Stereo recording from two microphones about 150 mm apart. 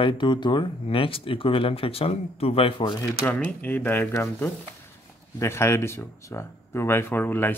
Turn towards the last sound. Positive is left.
turn(degrees=15)  # may be behind; listen again after turning